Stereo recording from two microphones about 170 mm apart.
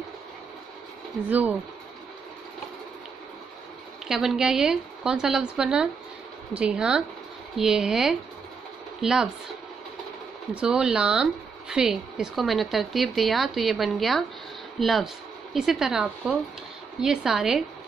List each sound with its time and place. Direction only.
4.1 s speech: centre (ahead or behind)
10.5 s speech: 5° right (ahead or behind)